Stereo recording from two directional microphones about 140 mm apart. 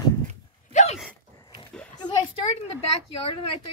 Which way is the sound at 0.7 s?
55° left (ahead or behind).